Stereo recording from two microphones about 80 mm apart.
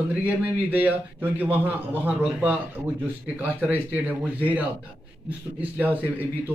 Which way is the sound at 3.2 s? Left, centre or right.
Centre.